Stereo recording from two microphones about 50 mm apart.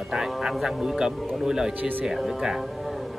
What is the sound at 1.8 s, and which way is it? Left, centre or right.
Speech, right.